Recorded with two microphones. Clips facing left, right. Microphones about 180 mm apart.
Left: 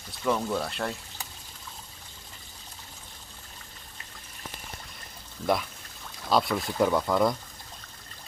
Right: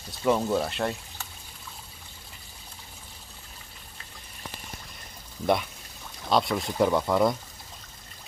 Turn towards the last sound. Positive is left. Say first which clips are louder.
# right 1 dB
turn(degrees=-5)  # may be behind; listen again after turning